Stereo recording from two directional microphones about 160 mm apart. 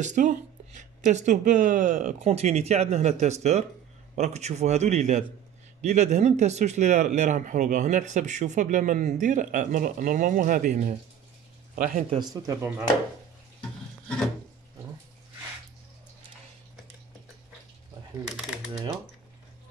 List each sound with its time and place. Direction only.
0.0 s speech: 55° right (ahead or behind)
12.2 s speech: 20° right (ahead or behind)
13.6 s a sound: 5° left (ahead or behind)